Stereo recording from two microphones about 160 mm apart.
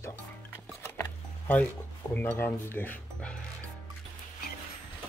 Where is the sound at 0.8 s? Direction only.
10° left (ahead or behind).